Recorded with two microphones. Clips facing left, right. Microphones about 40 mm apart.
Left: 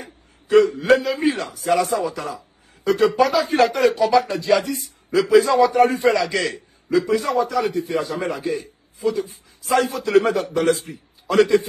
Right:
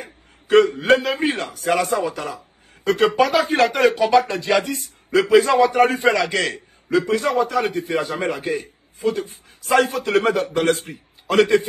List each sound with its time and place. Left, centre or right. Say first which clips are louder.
0.0 s a man's voice: right 1 dB; right